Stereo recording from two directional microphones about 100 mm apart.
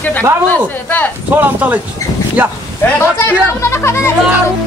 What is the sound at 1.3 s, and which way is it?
Speech, 15° right (ahead or behind).